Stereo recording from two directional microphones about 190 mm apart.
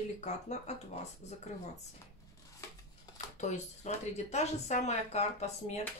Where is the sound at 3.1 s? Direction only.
35° left (ahead or behind).